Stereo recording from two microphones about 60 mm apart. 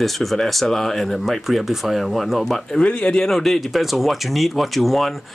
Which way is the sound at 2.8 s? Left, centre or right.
Centre.